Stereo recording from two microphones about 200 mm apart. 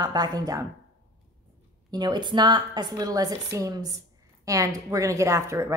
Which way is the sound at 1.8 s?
20° right (ahead or behind).